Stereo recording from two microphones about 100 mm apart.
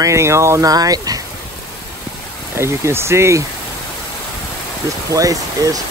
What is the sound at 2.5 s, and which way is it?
Speech, 25° right (ahead or behind).